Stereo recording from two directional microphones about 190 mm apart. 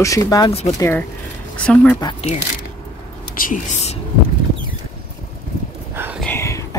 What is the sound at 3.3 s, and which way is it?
Speech, 45° left (ahead or behind).